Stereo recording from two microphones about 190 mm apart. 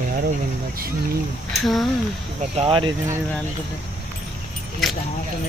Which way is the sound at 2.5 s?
30° right (ahead or behind).